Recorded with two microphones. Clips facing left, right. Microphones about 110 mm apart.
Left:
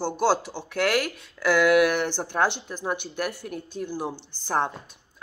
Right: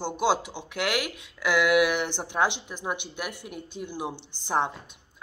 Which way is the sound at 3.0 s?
45° left (ahead or behind).